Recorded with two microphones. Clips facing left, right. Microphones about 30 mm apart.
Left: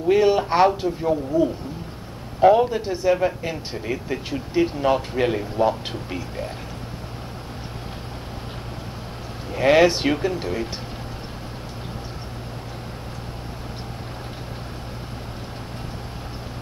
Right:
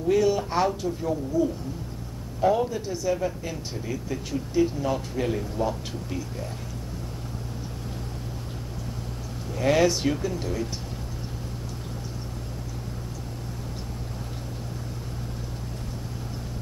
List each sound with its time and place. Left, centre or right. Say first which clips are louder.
0.1 s speech: left 5 dB; left
9.5 s speech: left 6 dB; left